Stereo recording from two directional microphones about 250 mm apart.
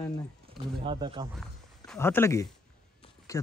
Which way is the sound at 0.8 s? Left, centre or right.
Centre.